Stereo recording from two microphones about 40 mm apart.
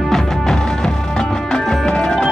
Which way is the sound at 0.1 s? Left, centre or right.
Centre.